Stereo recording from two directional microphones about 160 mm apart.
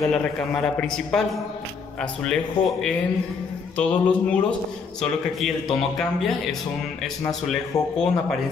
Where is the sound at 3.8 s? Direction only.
10° left (ahead or behind).